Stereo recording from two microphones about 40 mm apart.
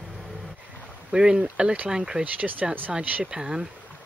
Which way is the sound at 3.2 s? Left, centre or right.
Centre.